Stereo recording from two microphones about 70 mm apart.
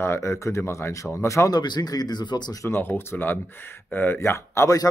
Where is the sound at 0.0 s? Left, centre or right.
Left.